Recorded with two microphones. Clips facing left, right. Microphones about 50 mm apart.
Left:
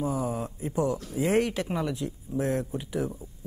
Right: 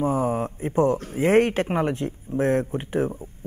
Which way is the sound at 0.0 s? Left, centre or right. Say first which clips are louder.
Right 6 dB; right.